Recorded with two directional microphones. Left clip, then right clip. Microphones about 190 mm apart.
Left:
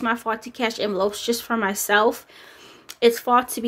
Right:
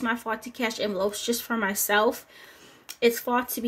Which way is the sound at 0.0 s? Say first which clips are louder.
Left 5 dB; 20° left (ahead or behind).